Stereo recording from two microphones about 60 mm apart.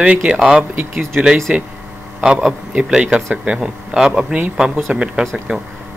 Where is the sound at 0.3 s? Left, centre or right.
Centre.